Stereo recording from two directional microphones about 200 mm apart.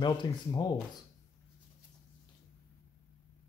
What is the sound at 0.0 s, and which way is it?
Speech, 20° left (ahead or behind).